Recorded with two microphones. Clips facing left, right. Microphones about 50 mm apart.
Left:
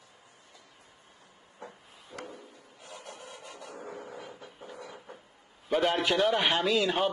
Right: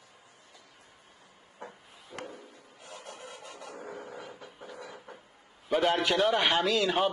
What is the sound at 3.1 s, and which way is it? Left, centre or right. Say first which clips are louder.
Music: right 1 dB; right.